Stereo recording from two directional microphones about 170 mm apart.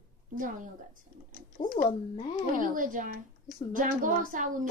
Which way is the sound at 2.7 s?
50° right (ahead or behind).